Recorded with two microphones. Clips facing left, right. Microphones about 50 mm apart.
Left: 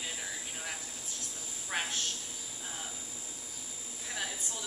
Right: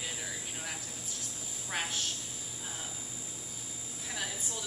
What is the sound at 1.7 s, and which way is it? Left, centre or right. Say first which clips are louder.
Speech: left 1 dB; centre.